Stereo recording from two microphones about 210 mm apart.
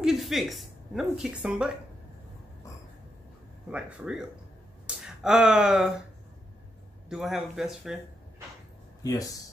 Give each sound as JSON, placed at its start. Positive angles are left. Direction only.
{"t": 0.0, "sound": "a woman's voice", "side_deg": 0}
{"t": 3.7, "sound": "speech", "side_deg": -5}
{"t": 7.1, "sound": "speech", "side_deg": 0}
{"t": 9.0, "sound": "speech", "side_deg": 15}